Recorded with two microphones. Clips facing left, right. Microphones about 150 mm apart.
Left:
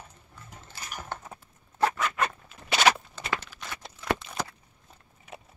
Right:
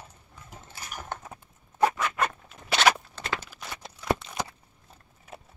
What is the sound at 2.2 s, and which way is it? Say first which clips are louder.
Zipper: right 1 dB; centre (ahead or behind).